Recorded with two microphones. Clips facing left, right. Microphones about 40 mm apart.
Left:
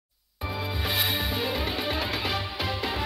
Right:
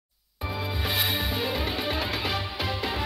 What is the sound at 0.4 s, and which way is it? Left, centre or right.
Music, centre.